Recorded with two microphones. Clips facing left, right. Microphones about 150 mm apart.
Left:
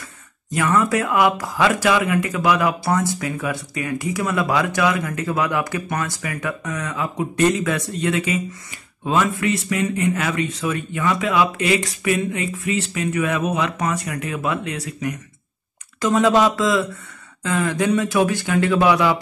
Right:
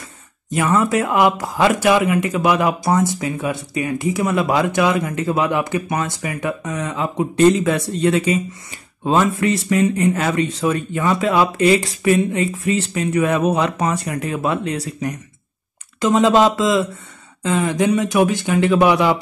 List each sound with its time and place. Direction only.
0.6 s speech: 25° right (ahead or behind)
16.0 s speech: 25° right (ahead or behind)